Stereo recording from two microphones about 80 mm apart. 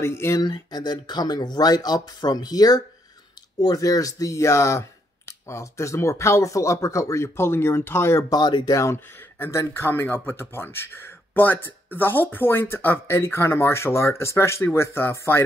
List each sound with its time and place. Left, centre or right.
0.0 s speech: left
0.4 s speech: left
8.3 s speech: left
8.7 s speech: left